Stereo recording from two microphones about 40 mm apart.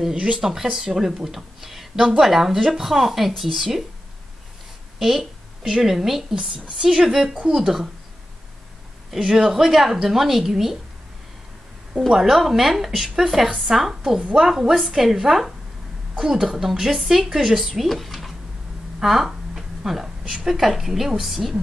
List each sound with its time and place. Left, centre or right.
0.4 s a woman's voice: centre
4.9 s a woman's voice: centre
9.1 s a woman's voice: centre
12.1 s a woman's voice: centre
18.9 s a sound: centre
20.4 s a woman's voice: centre